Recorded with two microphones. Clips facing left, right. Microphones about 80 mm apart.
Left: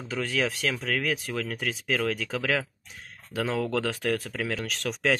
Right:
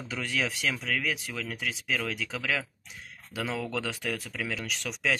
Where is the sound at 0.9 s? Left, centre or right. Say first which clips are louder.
Left 3 dB; left.